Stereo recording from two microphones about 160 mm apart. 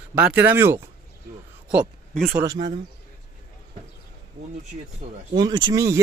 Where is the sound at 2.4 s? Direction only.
25° right (ahead or behind).